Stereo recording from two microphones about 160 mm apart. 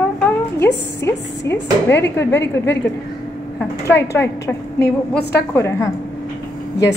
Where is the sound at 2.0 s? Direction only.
15° left (ahead or behind).